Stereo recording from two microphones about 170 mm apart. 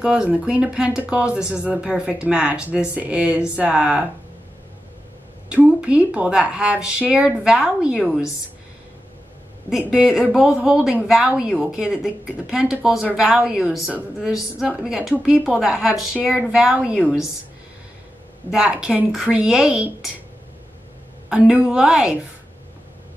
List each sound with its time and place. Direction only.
0.0 s speech: 5° right (ahead or behind)
5.5 s a woman's voice: 5° right (ahead or behind)
9.7 s a woman's voice: 5° right (ahead or behind)
18.5 s a woman's voice: 5° right (ahead or behind)
21.3 s a woman's voice: 5° right (ahead or behind)